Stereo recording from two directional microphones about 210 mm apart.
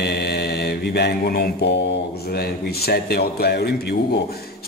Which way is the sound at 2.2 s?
50° left (ahead or behind).